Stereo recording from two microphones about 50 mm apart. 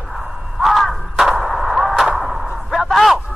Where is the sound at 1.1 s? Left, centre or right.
Centre.